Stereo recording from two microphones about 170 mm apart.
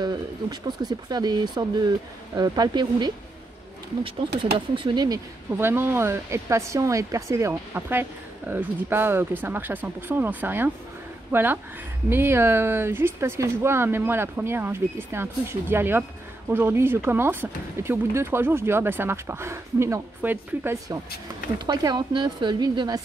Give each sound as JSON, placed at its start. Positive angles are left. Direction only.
{"t": 0.0, "sound": "speech", "side_deg": -25}
{"t": 4.6, "sound": "speech", "side_deg": -30}